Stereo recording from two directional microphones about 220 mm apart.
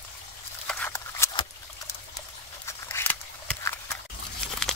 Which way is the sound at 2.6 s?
10° left (ahead or behind).